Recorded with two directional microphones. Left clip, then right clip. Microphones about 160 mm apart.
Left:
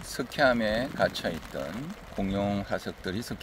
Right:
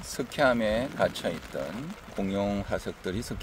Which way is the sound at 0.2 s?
Centre (ahead or behind).